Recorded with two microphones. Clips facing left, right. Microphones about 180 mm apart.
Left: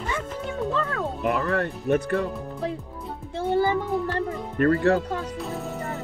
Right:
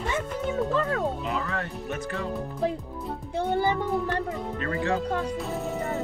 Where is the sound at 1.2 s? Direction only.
60° left (ahead or behind).